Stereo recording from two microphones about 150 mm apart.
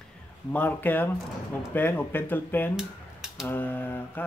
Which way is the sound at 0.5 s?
10° left (ahead or behind).